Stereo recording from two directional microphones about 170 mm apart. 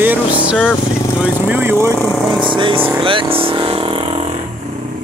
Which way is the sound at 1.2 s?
10° right (ahead or behind).